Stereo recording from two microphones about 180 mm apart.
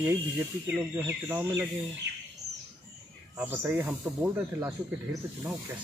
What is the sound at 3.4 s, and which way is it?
Speech, 10° right (ahead or behind).